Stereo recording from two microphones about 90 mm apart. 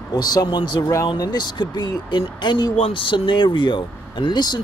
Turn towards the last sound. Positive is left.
turn(degrees=55)  # may be behind; listen again after turning